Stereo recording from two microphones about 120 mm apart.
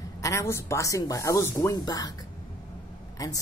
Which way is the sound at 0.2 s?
25° left (ahead or behind).